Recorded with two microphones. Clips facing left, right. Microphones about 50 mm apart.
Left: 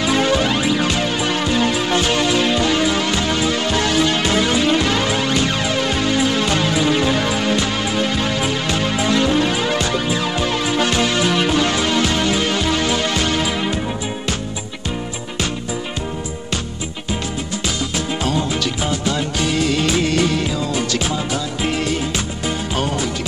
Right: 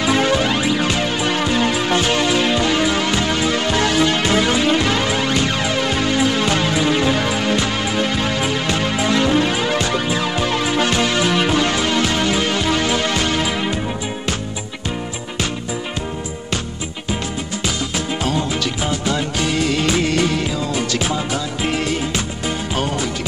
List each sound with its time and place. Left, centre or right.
0.0 s music: right
4.7 s music: centre
9.9 s music: right
11.7 s music: centre
12.7 s music: right
17.9 s music: centre